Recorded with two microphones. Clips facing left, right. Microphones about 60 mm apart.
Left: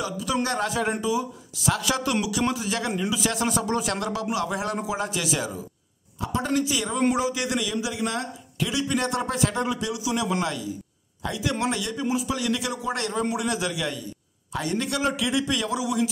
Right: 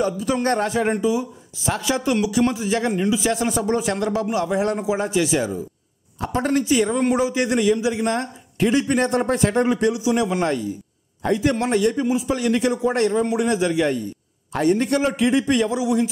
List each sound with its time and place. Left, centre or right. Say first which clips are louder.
0.0 s a man's voice: right 6 dB; right
0.4 s speech: right 5 dB; right
0.7 s a man's voice: right 5 dB; right
6.1 s speech: right 5 dB; right
6.5 s a man's voice: right 8 dB; right